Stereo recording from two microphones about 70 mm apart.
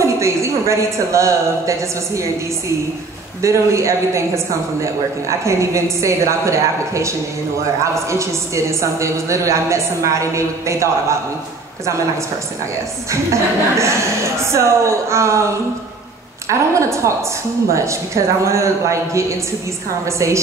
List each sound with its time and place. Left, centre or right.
0.0 s a woman's voice: right
3.4 s a woman's voice: right
13.1 s a woman's voice: right
16.4 s a woman's voice: right